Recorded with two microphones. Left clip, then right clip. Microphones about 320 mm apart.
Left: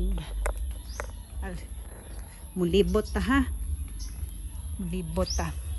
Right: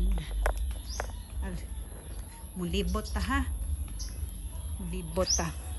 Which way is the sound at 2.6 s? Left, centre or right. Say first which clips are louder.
Left 10 dB; centre.